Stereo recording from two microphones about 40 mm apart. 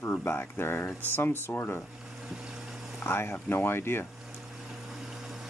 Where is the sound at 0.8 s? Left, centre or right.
Left.